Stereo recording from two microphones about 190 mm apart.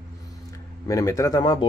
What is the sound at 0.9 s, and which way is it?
Speech, 20° left (ahead or behind).